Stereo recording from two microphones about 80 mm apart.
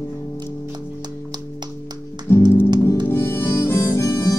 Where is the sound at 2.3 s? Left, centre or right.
Left.